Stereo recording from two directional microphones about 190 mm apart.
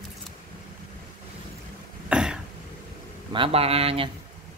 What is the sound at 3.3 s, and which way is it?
Speech, 30° right (ahead or behind).